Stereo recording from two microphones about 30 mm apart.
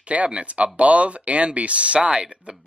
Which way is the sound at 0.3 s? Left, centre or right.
Right.